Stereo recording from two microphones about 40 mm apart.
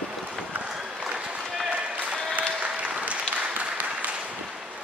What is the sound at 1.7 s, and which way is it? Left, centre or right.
Applause, right.